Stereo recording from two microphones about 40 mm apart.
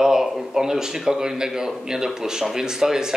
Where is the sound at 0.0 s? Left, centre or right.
Centre.